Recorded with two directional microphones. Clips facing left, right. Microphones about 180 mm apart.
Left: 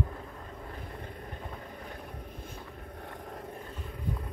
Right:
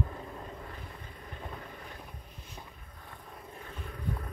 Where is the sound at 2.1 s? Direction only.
55° left (ahead or behind).